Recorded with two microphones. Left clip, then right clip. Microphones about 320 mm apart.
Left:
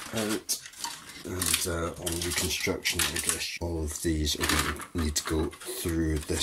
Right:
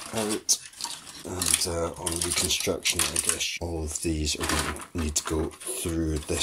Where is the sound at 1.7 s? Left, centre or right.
Centre.